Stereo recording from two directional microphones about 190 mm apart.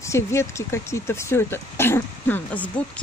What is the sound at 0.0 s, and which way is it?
Speech, 15° left (ahead or behind).